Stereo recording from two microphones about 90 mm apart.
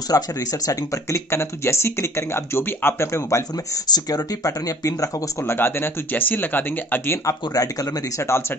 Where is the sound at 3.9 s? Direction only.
45° left (ahead or behind); by 7.1 s 20° left (ahead or behind).